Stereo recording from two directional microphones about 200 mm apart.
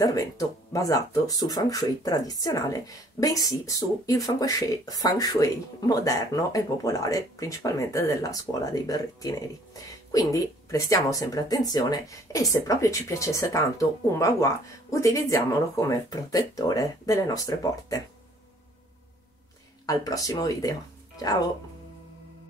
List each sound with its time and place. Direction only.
0.0 s speech: 15° left (ahead or behind)
19.9 s speech: 20° left (ahead or behind)